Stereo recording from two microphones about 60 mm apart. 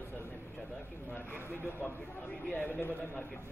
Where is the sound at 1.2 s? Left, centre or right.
Left.